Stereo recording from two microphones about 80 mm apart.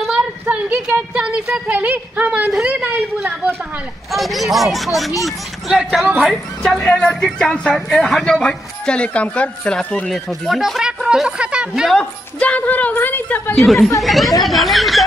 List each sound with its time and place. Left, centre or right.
0.5 s a sound: centre
2.5 s a woman's voice: centre
4.1 s speech: centre
6.8 s speech: centre
10.1 s speech: centre
11.9 s a woman's voice: centre
13.6 s speech: centre